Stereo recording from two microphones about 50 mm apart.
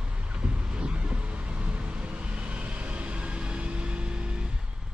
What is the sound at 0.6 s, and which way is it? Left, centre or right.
Vehicle, right.